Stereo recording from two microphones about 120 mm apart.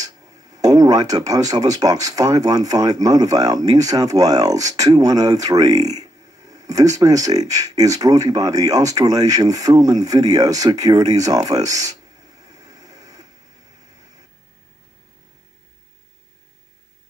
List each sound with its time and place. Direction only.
0.0 s speech: 30° right (ahead or behind)